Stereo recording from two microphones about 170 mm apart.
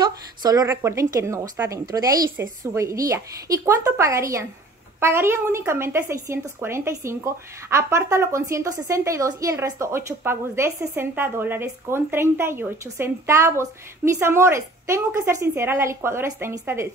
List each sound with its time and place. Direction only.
0.0 s speech: 20° right (ahead or behind)